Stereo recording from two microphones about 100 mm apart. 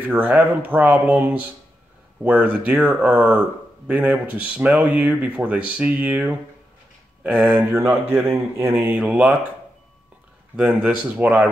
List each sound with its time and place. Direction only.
0.0 s speech: 15° right (ahead or behind)
10.5 s speech: 10° right (ahead or behind)